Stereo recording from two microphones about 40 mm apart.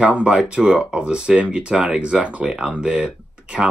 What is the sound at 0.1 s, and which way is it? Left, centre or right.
Speech, right.